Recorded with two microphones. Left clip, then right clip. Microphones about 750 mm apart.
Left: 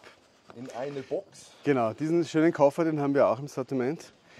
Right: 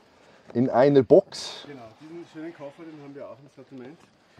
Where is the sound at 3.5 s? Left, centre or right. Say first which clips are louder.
Left 14 dB; left.